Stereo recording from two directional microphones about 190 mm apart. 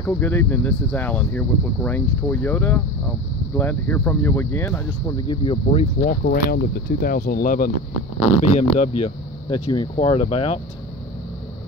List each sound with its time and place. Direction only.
0.0 s speech: 10° left (ahead or behind)
5.3 s speech: 25° left (ahead or behind)
6.0 s speech: 50° left (ahead or behind)
8.4 s speech: 35° left (ahead or behind)